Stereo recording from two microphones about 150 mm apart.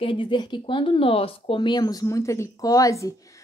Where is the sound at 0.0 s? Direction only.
35° left (ahead or behind).